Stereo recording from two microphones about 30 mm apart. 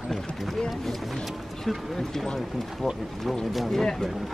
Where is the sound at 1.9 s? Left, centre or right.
Centre.